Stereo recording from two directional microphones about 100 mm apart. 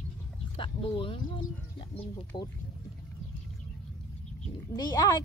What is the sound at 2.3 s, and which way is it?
Speech, 45° left (ahead or behind).